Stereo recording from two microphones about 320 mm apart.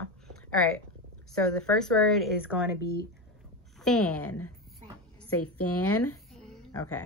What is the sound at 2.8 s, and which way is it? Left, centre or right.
Speech, left.